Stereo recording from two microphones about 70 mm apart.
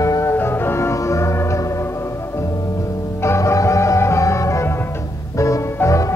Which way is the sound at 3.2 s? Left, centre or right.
Left.